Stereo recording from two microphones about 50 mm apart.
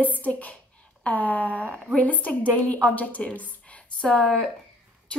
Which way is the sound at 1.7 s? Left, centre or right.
Centre.